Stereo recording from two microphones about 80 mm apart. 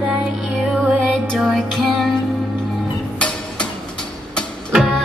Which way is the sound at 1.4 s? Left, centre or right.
Centre.